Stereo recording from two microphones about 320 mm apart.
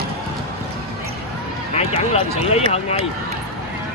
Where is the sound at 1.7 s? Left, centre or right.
Centre.